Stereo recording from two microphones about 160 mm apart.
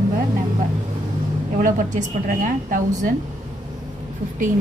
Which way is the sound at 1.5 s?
55° right (ahead or behind).